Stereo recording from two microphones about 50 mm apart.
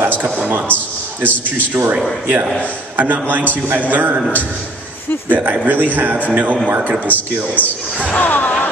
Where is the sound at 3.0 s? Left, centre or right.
Right.